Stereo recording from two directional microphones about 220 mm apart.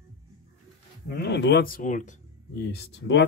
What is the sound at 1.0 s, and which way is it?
Speech, 45° left (ahead or behind).